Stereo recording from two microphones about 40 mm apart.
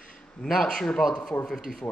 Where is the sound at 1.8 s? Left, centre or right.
Left.